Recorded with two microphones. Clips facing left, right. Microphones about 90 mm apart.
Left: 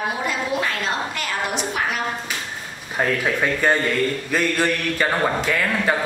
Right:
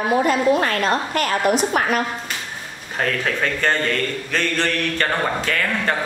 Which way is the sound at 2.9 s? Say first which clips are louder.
Left 1 dB; 10° left (ahead or behind).